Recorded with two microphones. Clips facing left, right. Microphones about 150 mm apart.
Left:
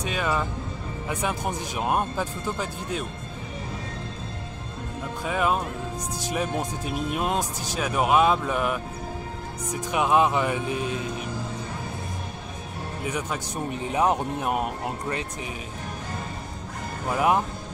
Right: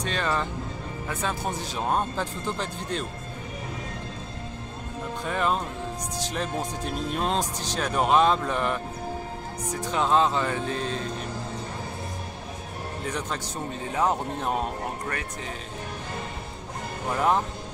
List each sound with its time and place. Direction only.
0.0 s speech: 10° left (ahead or behind)
5.2 s speech: 5° left (ahead or behind)
13.0 s speech: 10° left (ahead or behind)
17.1 s speech: 10° left (ahead or behind)